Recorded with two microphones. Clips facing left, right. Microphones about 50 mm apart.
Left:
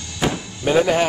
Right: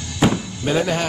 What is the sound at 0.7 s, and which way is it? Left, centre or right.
Speech, centre.